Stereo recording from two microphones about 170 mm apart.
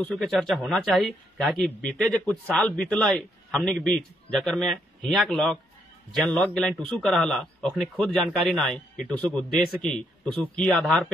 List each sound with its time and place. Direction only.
0.0 s a man's voice: 5° left (ahead or behind)